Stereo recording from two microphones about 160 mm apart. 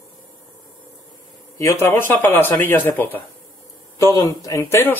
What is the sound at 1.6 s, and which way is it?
A man's voice, 15° left (ahead or behind).